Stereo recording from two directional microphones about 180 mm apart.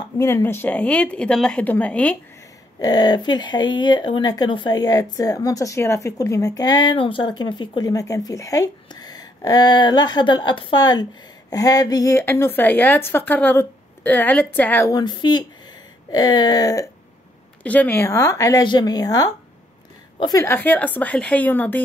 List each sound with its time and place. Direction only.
0.2 s a woman's voice: 15° left (ahead or behind)
2.8 s a woman's voice: 25° left (ahead or behind)
15.0 s speech: 25° left (ahead or behind)
17.6 s a woman's voice: 10° left (ahead or behind)